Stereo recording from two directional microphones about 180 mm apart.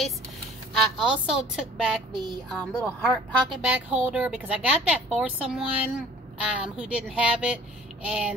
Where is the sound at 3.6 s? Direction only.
5° right (ahead or behind).